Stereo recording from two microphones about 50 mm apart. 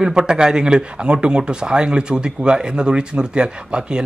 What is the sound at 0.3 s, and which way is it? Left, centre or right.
A man's voice, centre.